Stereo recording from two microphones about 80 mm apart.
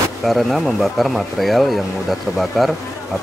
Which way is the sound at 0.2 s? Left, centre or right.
Centre.